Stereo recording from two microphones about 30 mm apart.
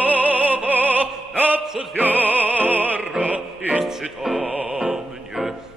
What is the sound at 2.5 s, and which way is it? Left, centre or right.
Music, right.